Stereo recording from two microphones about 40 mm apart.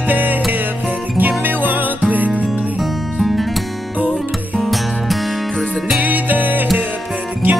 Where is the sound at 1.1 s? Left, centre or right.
Right.